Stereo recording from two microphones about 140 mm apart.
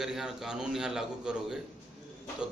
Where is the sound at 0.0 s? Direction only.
5° right (ahead or behind).